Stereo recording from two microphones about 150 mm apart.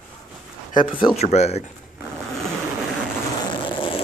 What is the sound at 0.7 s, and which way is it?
Speech, 35° left (ahead or behind).